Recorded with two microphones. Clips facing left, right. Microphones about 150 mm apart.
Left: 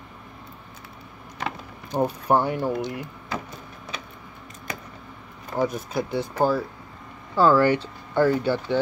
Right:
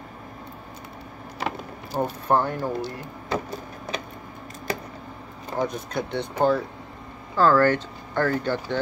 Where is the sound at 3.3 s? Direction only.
35° right (ahead or behind).